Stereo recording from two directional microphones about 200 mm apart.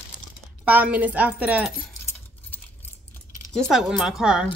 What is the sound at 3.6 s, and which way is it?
Speech, centre (ahead or behind).